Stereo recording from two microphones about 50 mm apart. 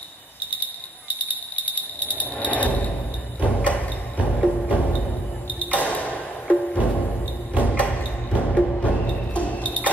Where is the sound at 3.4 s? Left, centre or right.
Right.